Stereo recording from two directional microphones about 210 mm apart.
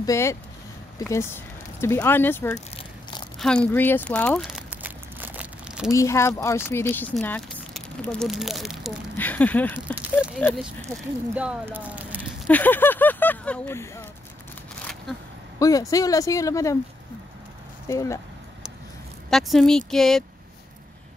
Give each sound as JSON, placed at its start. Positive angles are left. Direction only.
{"t": 0.0, "sound": "speech", "side_deg": 15}
{"t": 3.3, "sound": "a sound", "side_deg": 5}
{"t": 5.9, "sound": "speech", "side_deg": 15}
{"t": 12.4, "sound": "speech", "side_deg": 10}
{"t": 15.6, "sound": "speech", "side_deg": 15}
{"t": 17.8, "sound": "speech", "side_deg": 15}
{"t": 19.3, "sound": "speech", "side_deg": 0}